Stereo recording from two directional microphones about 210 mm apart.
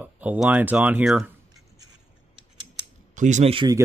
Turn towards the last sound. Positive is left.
turn(degrees=-25)  # may be behind; listen again after turning